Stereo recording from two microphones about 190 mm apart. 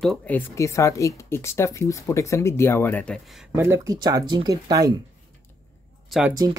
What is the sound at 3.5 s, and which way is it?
Speech, 15° right (ahead or behind).